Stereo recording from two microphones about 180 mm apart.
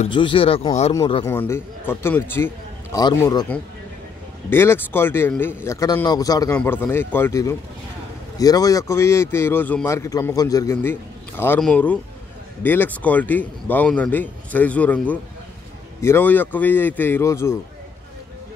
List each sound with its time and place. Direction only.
0.1 s speech: 30° left (ahead or behind)
1.2 s speech: 15° left (ahead or behind)
4.5 s speech: 15° left (ahead or behind)